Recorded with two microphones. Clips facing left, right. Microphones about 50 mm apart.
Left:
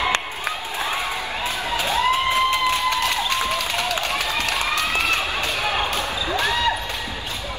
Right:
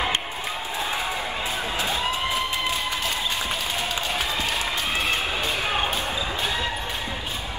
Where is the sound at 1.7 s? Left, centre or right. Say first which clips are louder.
Left 8 dB; left.